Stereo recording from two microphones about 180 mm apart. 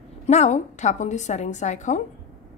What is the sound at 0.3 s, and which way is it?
A woman's voice, 40° left (ahead or behind).